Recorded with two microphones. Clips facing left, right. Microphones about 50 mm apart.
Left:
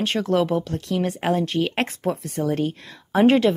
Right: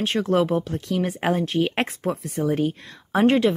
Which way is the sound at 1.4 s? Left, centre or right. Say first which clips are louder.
Even; centre.